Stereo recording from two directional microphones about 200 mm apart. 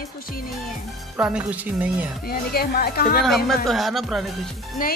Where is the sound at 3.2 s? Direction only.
Centre (ahead or behind).